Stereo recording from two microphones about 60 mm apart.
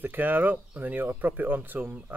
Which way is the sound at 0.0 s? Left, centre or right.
Right.